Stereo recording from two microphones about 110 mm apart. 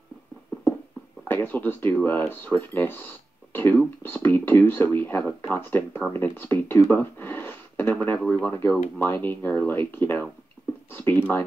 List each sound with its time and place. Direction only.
1.2 s speech: 20° left (ahead or behind)